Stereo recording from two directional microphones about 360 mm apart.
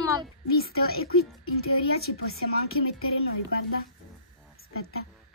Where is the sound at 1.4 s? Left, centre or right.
Left.